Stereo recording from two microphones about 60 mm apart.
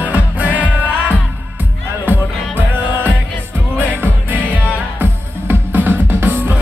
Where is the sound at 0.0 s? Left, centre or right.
Right.